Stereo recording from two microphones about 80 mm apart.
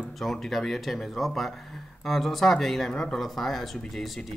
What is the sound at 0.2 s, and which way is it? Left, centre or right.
Speech, centre.